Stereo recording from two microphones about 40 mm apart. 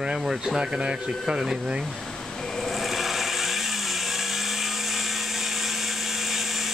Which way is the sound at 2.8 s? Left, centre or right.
Centre.